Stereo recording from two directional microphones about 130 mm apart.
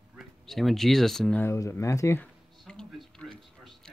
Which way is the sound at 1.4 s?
20° left (ahead or behind).